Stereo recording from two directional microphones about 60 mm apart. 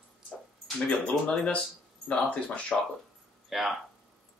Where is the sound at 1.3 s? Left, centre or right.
Centre.